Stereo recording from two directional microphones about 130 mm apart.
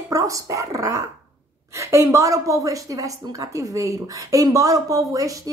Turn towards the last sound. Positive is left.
turn(degrees=-25)  # may be behind; listen again after turning